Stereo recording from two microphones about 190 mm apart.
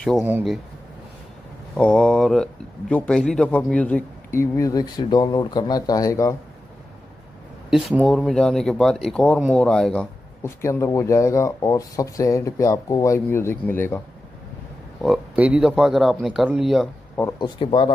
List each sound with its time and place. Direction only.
1.8 s speech: 5° left (ahead or behind)
8.0 s speech: centre (ahead or behind)
10.4 s speech: 15° left (ahead or behind)
15.0 s speech: 5° right (ahead or behind)
17.2 s speech: 15° left (ahead or behind)
17.6 s speech: 25° left (ahead or behind)